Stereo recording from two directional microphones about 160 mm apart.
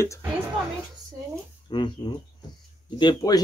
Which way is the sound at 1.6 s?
30° left (ahead or behind).